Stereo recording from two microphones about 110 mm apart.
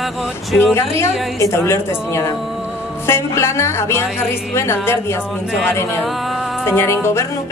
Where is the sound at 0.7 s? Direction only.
25° left (ahead or behind).